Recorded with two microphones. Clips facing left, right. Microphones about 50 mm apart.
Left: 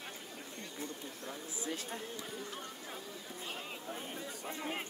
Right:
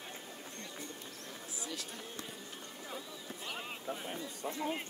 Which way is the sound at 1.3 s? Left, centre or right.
Left.